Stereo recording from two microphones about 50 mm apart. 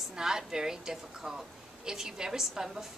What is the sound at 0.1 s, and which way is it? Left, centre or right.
A woman's voice, centre.